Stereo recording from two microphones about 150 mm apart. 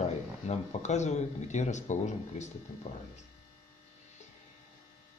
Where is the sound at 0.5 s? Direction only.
50° left (ahead or behind).